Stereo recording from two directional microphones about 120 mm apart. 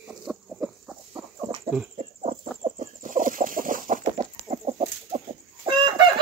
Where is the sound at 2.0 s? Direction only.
70° right (ahead or behind); by 3.3 s 90° right.